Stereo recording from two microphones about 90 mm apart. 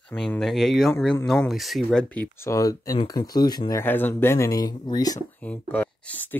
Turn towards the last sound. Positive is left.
turn(degrees=20)  # may be behind; listen again after turning